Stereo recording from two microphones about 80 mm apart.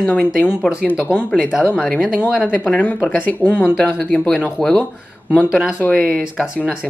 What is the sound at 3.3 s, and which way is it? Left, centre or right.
Speech, left.